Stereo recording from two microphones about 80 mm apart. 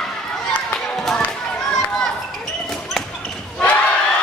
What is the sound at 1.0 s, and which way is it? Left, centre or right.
Children playing, centre.